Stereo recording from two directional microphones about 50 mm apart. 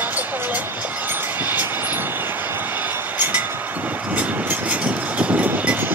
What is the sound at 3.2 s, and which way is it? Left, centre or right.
Vehicle, right.